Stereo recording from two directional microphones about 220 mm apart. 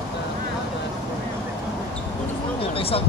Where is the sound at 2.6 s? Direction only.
25° left (ahead or behind).